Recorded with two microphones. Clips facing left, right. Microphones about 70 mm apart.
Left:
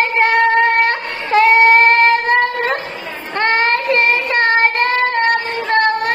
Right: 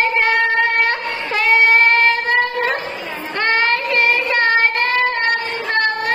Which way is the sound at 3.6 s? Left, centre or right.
Left.